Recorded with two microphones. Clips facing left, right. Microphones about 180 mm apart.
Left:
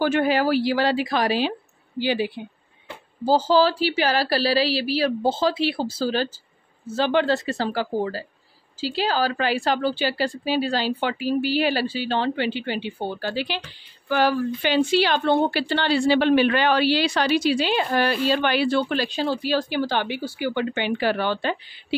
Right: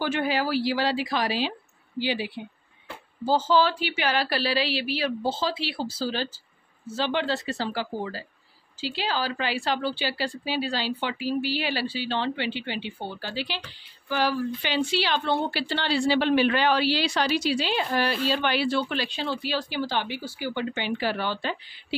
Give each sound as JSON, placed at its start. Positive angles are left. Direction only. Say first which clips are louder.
{"t": 0.0, "sound": "a woman's voice", "louder": "left 6 dB", "side_deg": 50}
{"t": 3.3, "sound": "a woman's voice", "louder": "left 4 dB", "side_deg": 35}